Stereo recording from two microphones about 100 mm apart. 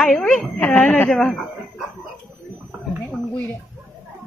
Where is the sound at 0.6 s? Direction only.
15° left (ahead or behind).